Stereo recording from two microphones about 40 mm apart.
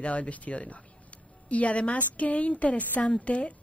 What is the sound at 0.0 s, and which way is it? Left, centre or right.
Speech, left.